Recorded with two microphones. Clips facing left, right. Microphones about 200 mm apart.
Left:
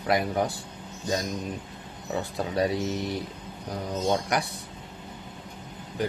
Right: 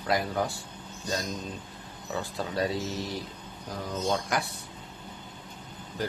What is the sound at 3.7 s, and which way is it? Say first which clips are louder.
Speech: left 3 dB; 20° left (ahead or behind).